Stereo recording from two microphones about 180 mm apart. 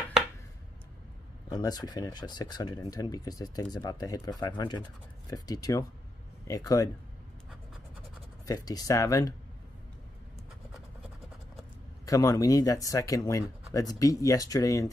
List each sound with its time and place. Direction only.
1.5 s speech: 20° left (ahead or behind)
8.5 s speech: 20° left (ahead or behind)
12.1 s speech: 20° left (ahead or behind)